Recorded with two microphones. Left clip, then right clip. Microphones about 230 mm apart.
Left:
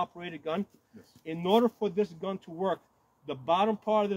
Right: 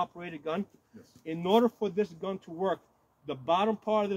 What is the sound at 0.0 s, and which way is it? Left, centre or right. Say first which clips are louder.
A man's voice: even; centre.